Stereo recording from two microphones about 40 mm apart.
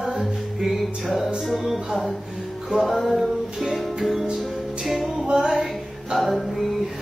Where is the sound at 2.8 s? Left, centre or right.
Centre.